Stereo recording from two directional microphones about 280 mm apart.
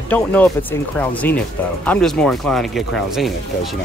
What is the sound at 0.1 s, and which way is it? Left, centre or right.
Speech, centre.